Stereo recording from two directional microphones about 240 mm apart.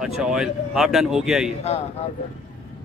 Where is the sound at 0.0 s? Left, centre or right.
Centre.